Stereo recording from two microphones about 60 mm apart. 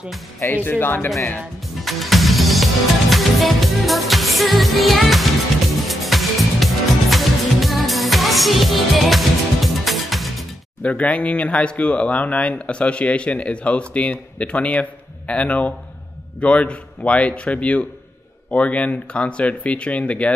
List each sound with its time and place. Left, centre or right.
0.7 s speech: left
1.8 s music: centre
10.8 s speech: left